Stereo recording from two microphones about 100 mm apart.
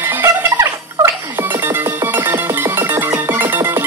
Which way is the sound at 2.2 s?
20° right (ahead or behind).